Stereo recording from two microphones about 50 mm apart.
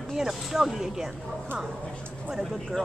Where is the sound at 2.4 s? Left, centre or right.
Centre.